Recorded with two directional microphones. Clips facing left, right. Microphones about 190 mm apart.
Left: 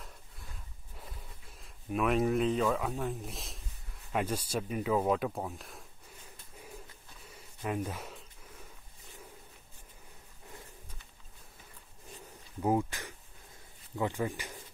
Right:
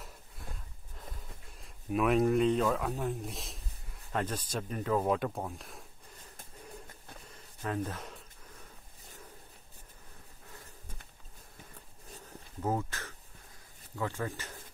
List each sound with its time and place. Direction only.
1.5 s speech: centre (ahead or behind)
7.3 s a sound: 10° left (ahead or behind)
12.6 s speech: 15° left (ahead or behind)